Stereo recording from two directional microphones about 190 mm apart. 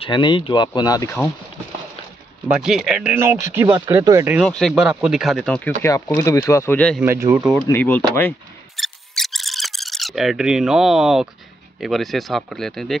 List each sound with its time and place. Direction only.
0.0 s speech: 25° left (ahead or behind)
2.4 s speech: 5° right (ahead or behind)
3.6 s speech: 25° right (ahead or behind)
3.9 s speech: 15° right (ahead or behind)
4.4 s speech: centre (ahead or behind)
5.8 s speech: 15° left (ahead or behind)
7.0 s speech: 15° right (ahead or behind)
7.7 s speech: 10° left (ahead or behind)
8.7 s a sound: centre (ahead or behind)
11.8 s speech: centre (ahead or behind)